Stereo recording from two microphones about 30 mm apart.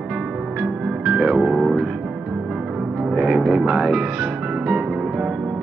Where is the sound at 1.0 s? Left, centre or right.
Right.